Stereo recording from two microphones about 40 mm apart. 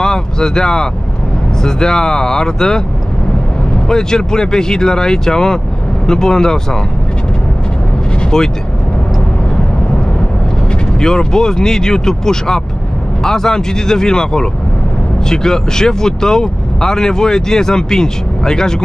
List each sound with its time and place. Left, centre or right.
0.0 s a sound: centre
1.6 s speech: centre
3.9 s speech: centre
8.2 s vehicle: centre
11.0 s speech: centre